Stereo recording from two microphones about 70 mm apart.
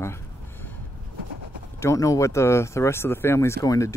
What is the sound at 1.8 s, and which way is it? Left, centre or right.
Speech, left.